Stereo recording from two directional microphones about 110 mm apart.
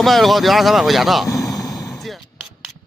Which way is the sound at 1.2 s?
30° left (ahead or behind).